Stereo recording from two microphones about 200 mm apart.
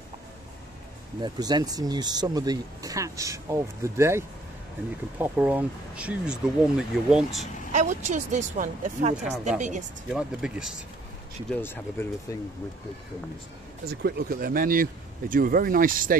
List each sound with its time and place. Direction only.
1.2 s speech: 20° right (ahead or behind)
5.2 s speech: 10° right (ahead or behind)
7.7 s speech: 40° right (ahead or behind)
10.0 s speech: 5° right (ahead or behind)
11.5 s speech: 10° left (ahead or behind)
13.8 s speech: 50° right (ahead or behind)